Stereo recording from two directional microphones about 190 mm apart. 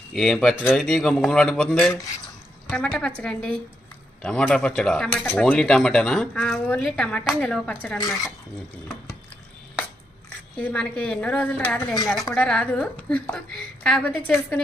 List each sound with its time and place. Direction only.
0.1 s speech: centre (ahead or behind)
8.0 s speech: 20° left (ahead or behind)
10.6 s a woman's voice: 5° left (ahead or behind)